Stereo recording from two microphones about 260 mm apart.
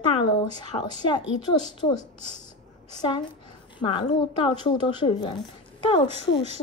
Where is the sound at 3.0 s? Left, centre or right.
Centre.